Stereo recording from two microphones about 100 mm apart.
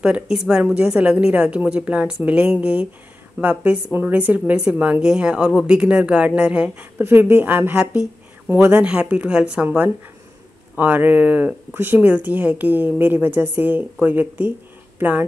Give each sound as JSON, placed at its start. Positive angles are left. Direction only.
{"t": 0.0, "sound": "a woman's voice", "side_deg": -10}
{"t": 7.7, "sound": "a woman's voice", "side_deg": -10}
{"t": 8.5, "sound": "speech", "side_deg": -20}
{"t": 8.8, "sound": "a woman's voice", "side_deg": -10}